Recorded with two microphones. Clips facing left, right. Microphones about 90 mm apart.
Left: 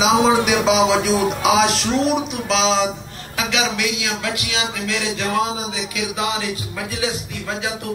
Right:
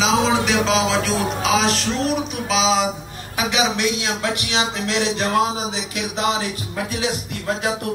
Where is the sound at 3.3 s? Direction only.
15° right (ahead or behind).